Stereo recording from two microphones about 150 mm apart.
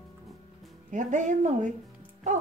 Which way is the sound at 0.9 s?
55° right (ahead or behind).